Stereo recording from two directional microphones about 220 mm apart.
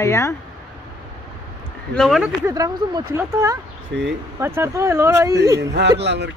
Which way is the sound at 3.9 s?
55° right (ahead or behind).